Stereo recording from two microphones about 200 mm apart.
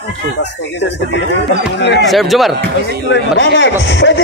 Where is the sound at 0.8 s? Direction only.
60° left (ahead or behind).